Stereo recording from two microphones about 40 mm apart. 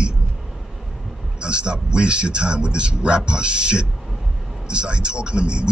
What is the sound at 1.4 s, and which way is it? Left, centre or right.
Speech, right.